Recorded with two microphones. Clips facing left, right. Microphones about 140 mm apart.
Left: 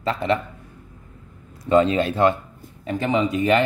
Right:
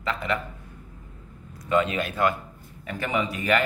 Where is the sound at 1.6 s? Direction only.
30° left (ahead or behind).